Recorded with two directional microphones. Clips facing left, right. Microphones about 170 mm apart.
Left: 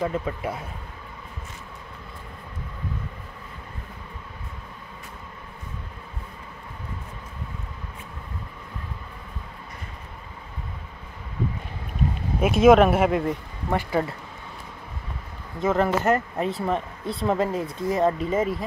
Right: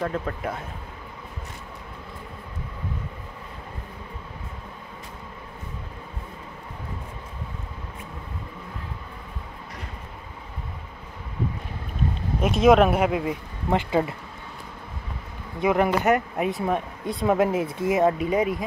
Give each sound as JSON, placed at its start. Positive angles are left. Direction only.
{"t": 0.0, "sound": "speech", "side_deg": 10}
{"t": 12.4, "sound": "speech", "side_deg": 5}
{"t": 13.7, "sound": "speech", "side_deg": -20}
{"t": 15.6, "sound": "speech", "side_deg": -15}
{"t": 17.9, "sound": "speech", "side_deg": -5}